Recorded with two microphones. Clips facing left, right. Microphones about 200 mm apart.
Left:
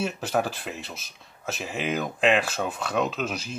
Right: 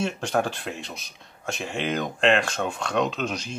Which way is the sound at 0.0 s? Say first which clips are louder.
Right 1 dB; 5° left (ahead or behind).